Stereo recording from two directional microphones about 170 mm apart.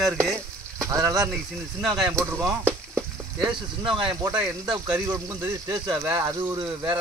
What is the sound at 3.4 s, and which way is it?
Speech, 30° right (ahead or behind).